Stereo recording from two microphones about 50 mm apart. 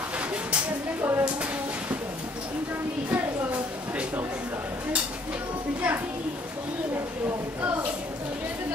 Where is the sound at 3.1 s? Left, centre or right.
Right.